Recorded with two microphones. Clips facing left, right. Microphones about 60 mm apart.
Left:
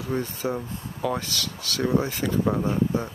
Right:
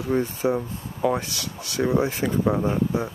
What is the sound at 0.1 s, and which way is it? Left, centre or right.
Speech, centre.